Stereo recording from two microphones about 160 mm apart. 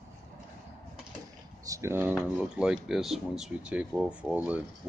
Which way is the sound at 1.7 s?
15° right (ahead or behind).